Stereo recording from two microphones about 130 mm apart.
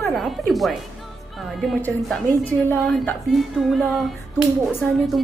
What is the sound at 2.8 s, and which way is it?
A woman's voice, centre (ahead or behind).